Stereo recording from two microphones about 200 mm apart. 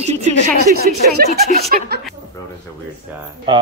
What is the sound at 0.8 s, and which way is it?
Speech, 50° right (ahead or behind).